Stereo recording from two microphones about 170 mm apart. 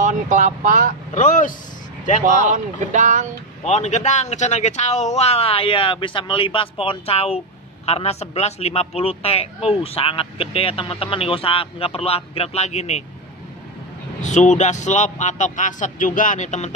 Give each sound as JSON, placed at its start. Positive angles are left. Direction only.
{"t": 0.0, "sound": "speech", "side_deg": -45}
{"t": 1.1, "sound": "a man's voice", "side_deg": 45}
{"t": 2.2, "sound": "speech", "side_deg": -45}
{"t": 3.6, "sound": "a man's voice", "side_deg": 45}
{"t": 14.2, "sound": "a man's voice", "side_deg": 45}